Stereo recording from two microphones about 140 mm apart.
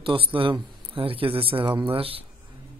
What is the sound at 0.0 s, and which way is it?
Speech, 40° right (ahead or behind).